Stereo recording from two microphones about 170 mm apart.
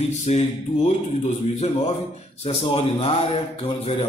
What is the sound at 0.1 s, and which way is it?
A man's voice, 40° left (ahead or behind).